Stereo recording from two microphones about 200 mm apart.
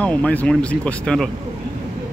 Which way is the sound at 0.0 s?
5° left (ahead or behind).